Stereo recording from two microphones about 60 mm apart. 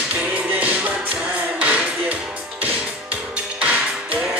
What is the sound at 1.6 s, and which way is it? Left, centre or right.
Music, right.